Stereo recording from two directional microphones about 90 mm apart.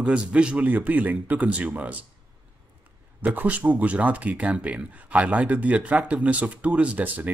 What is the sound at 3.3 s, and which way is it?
Speech, 15° right (ahead or behind).